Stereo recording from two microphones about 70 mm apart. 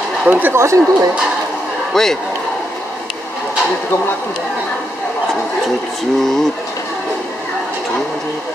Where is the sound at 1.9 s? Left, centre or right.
Centre.